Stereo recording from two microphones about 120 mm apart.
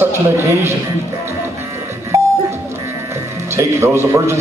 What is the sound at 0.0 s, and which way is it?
Speech, 25° right (ahead or behind).